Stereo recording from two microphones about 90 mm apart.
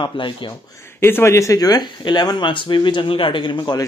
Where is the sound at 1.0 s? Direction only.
25° left (ahead or behind).